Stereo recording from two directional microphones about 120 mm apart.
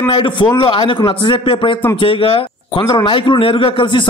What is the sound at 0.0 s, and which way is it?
A man's voice, 40° left (ahead or behind).